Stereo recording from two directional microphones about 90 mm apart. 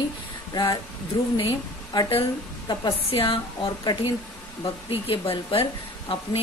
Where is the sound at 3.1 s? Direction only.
90° left.